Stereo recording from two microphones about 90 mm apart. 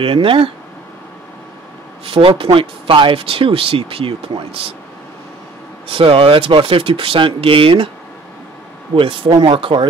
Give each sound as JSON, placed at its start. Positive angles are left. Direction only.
{"t": 0.0, "sound": "speech", "side_deg": -85}
{"t": 2.0, "sound": "speech", "side_deg": -85}
{"t": 5.9, "sound": "speech", "side_deg": -85}
{"t": 8.9, "sound": "speech", "side_deg": -70}